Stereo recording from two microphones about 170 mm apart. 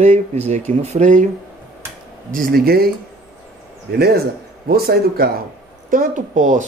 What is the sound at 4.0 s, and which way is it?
Speech, 65° right (ahead or behind).